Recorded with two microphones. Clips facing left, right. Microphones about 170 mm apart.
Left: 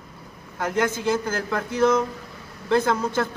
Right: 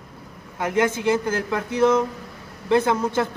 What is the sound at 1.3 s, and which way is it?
Speech, 20° right (ahead or behind).